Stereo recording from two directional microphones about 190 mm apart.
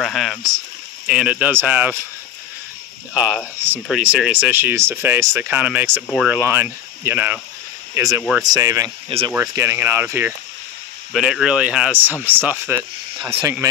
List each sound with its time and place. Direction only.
0.0 s speech: centre (ahead or behind)
3.2 s speech: 5° right (ahead or behind)